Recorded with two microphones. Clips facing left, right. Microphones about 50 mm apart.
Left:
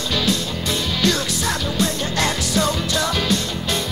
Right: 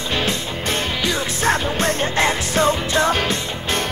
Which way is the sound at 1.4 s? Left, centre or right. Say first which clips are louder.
Right 3 dB; right.